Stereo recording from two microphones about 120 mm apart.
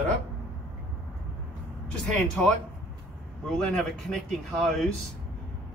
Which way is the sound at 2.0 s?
10° left (ahead or behind).